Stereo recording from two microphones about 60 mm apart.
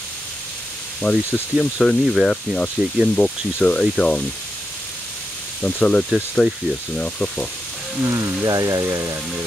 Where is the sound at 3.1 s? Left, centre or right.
Centre.